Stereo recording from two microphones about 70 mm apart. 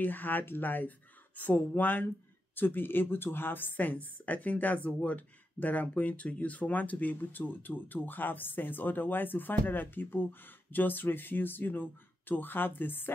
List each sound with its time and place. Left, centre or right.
0.0 s speech: left